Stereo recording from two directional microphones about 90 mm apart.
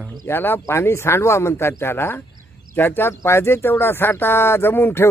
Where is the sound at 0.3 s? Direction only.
25° left (ahead or behind).